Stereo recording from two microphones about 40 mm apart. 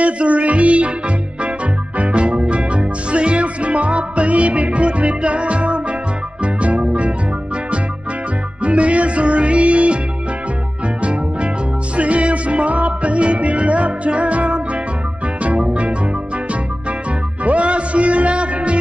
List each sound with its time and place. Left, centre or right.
0.0 s music: right
8.6 s music: right
12.0 s music: right
17.5 s music: right